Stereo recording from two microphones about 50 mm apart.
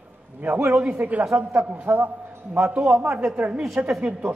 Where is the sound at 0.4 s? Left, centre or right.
Right.